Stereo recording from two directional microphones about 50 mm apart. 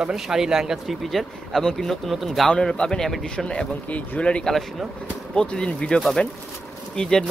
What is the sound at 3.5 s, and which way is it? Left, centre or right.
Speech, left.